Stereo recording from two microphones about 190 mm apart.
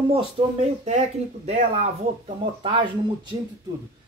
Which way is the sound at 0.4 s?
25° right (ahead or behind).